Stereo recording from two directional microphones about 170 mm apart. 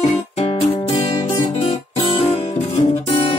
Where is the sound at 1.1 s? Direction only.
25° left (ahead or behind).